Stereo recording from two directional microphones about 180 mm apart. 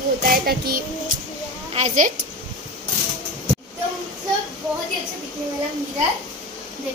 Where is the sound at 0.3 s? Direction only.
55° right (ahead or behind).